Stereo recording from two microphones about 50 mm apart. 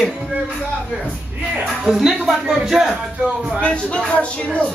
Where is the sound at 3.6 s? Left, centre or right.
Left.